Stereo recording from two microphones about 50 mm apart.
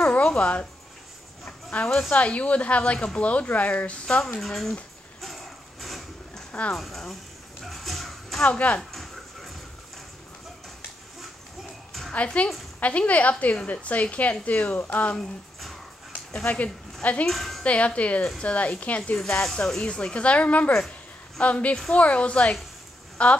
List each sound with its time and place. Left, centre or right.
0.3 s speech: left
1.9 s speech: centre
2.1 s speech: left
4.4 s speech: centre
5.2 s a sound: centre
6.7 s speech: centre
7.6 s a sound: centre
8.4 s speech: left
8.9 s a sound: centre
12.4 s speech: left
16.4 s speech: left
17.3 s a woman's voice: centre
17.6 s speech: left
19.4 s speech: centre